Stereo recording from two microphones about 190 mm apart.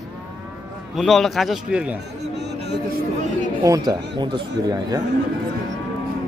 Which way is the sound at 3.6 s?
20° right (ahead or behind).